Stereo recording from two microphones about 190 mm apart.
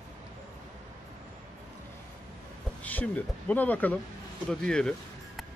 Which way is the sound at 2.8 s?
5° left (ahead or behind).